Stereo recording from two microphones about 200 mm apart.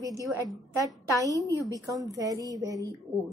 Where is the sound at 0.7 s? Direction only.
15° right (ahead or behind).